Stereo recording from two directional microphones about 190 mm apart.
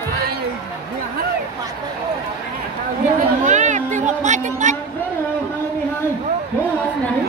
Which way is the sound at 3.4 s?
40° right (ahead or behind).